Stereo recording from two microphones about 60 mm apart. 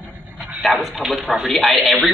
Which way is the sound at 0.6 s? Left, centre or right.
Centre.